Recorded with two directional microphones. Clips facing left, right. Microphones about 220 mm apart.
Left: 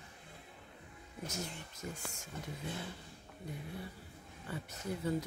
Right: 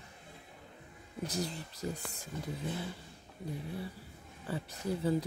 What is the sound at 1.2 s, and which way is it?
Speech, 35° right (ahead or behind).